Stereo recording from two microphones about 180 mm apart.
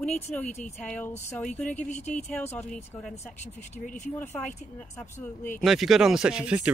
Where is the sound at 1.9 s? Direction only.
40° left (ahead or behind).